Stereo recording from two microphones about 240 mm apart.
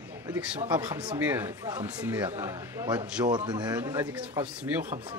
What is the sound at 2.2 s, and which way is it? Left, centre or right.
Speech, centre.